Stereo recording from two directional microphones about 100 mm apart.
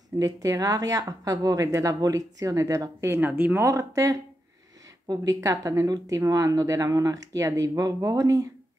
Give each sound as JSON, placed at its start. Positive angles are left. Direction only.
{"t": 0.2, "sound": "speech", "side_deg": -35}
{"t": 3.6, "sound": "speech", "side_deg": -30}